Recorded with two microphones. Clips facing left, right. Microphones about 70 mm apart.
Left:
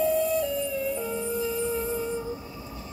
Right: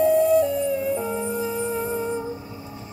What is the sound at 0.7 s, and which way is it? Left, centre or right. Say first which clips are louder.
Music: right 5 dB; right.